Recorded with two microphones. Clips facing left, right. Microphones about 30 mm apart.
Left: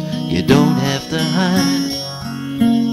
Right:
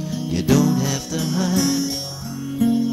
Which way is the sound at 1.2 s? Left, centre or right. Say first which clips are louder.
Left 4 dB; left.